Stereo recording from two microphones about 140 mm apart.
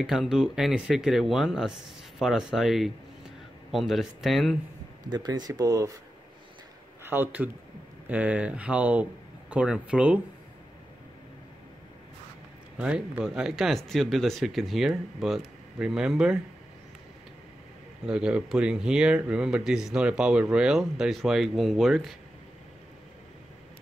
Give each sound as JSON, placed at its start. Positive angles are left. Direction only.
{"t": 0.0, "sound": "speech", "side_deg": 0}
{"t": 5.0, "sound": "speech", "side_deg": -30}
{"t": 7.1, "sound": "speech", "side_deg": -15}
{"t": 12.7, "sound": "speech", "side_deg": -10}
{"t": 18.0, "sound": "speech", "side_deg": -5}